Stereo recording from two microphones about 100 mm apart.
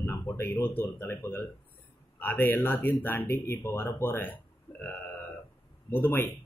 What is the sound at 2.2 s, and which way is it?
Speech, 20° left (ahead or behind).